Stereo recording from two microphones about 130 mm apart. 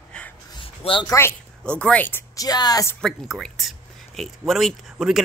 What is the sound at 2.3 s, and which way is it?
Speech, 30° left (ahead or behind).